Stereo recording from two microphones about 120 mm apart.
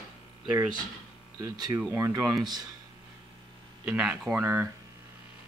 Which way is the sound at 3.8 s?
10° right (ahead or behind).